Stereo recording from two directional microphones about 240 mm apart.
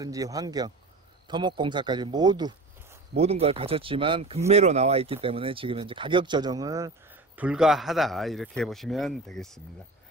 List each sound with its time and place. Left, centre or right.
0.0 s speech: centre